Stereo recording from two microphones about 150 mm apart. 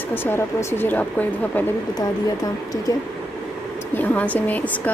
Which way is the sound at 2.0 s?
25° left (ahead or behind).